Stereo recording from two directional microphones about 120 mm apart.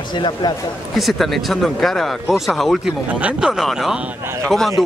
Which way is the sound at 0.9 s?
Centre (ahead or behind).